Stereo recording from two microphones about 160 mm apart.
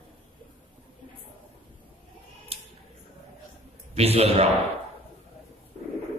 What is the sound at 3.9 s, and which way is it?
Speech, 40° right (ahead or behind).